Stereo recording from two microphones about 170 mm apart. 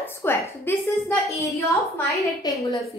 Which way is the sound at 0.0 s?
15° left (ahead or behind).